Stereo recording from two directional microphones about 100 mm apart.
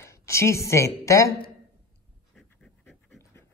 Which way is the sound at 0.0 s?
30° left (ahead or behind).